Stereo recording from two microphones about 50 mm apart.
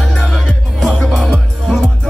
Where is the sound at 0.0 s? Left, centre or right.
Centre.